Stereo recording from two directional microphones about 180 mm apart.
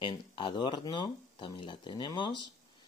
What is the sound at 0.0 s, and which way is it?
Speech, 25° left (ahead or behind).